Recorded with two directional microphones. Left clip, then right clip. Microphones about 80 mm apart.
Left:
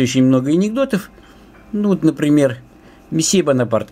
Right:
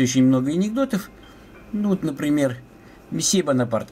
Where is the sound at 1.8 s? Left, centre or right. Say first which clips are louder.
Left 8 dB; left.